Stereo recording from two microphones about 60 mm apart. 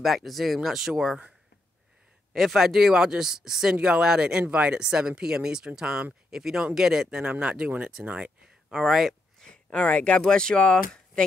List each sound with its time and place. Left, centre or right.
0.0 s speech: centre
2.3 s speech: centre
8.7 s speech: centre
9.4 s speech: centre